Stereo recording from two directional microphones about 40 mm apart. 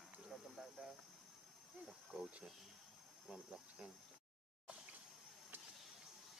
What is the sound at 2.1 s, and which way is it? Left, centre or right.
Speech, right.